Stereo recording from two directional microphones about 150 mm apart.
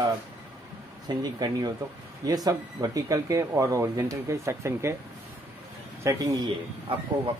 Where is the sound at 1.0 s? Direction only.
25° right (ahead or behind).